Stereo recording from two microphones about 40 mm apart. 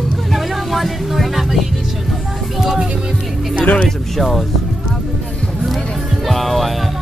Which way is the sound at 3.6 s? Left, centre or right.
Left.